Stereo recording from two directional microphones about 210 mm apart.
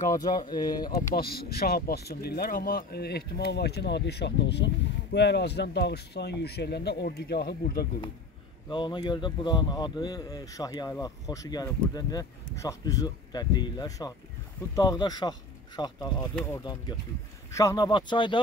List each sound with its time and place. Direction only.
0.1 s speech: 20° left (ahead or behind)
1.1 s speech: 45° left (ahead or behind)
8.6 s speech: 20° left (ahead or behind)